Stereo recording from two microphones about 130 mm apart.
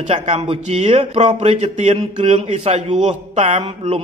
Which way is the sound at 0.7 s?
60° right (ahead or behind).